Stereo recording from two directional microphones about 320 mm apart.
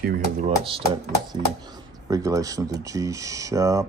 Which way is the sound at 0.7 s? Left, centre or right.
Centre.